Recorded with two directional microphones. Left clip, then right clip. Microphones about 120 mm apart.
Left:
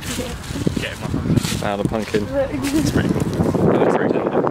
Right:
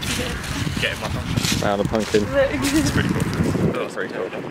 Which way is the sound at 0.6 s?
Centre (ahead or behind).